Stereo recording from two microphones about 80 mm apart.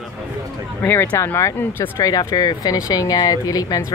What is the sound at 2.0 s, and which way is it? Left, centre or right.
Speech, left.